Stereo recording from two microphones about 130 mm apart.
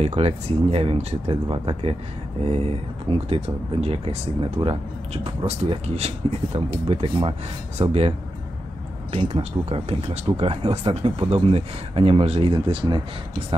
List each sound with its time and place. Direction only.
0.0 s speech: 50° right (ahead or behind)
9.1 s speech: 55° right (ahead or behind); by 13.0 s 40° right (ahead or behind)